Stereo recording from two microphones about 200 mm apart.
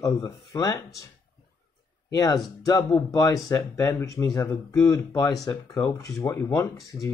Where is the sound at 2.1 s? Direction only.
20° left (ahead or behind).